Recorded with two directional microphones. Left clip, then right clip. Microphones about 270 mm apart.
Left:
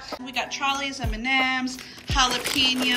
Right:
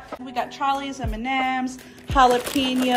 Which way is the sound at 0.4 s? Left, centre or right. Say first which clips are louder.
Right 2 dB; centre.